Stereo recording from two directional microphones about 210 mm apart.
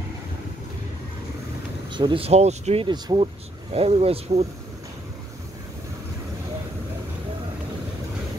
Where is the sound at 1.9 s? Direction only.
25° right (ahead or behind).